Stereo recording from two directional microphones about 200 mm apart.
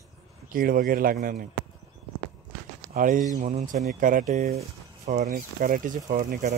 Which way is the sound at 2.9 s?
45° right (ahead or behind).